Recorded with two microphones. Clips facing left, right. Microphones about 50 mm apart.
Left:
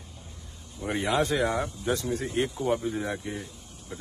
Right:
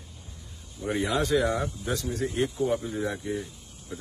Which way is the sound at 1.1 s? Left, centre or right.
Left.